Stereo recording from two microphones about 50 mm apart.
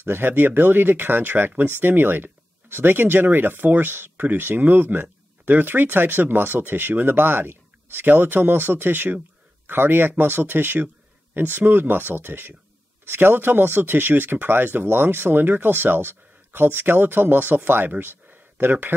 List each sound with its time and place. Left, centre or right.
0.0 s speech: right